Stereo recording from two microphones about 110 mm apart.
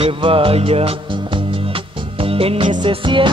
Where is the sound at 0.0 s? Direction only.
55° right (ahead or behind).